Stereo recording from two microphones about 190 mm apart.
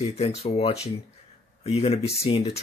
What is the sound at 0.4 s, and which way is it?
Speech, 30° left (ahead or behind).